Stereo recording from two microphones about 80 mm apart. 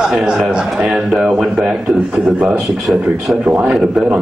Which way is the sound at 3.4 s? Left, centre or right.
Centre.